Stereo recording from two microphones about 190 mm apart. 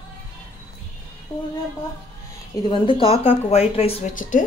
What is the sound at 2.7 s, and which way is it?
A woman's voice, 30° left (ahead or behind).